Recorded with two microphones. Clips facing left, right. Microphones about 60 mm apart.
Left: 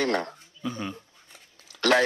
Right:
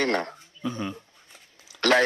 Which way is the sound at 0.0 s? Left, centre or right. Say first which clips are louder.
Right 1 dB; right.